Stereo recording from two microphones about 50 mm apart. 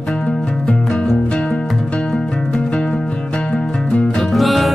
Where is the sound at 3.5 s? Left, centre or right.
Centre.